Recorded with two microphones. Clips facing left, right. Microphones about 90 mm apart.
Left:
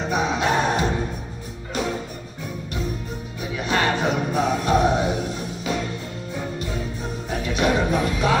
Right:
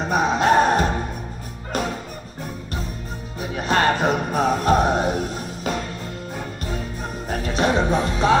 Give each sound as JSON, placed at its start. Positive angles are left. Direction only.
{"t": 0.1, "sound": "music", "side_deg": -40}
{"t": 3.3, "sound": "music", "side_deg": -40}
{"t": 7.2, "sound": "music", "side_deg": -40}